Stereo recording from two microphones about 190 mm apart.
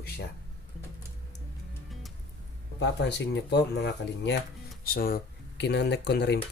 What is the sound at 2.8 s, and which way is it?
Speech, 65° left (ahead or behind).